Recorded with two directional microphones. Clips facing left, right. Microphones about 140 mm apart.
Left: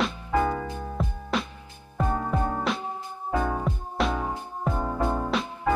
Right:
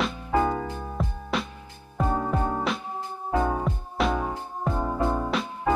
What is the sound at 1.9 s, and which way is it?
Music, 15° right (ahead or behind).